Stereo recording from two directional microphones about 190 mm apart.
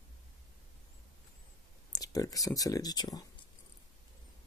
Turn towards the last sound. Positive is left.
turn(degrees=20)  # may be behind; listen again after turning